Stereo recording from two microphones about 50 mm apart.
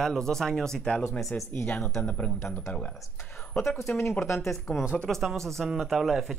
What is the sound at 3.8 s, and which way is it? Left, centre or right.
Speech, left.